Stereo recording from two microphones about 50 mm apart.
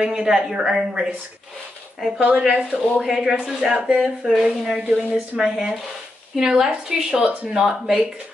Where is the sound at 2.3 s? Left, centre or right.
Right.